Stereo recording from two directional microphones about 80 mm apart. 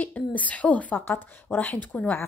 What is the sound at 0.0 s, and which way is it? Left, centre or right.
A woman's voice, centre.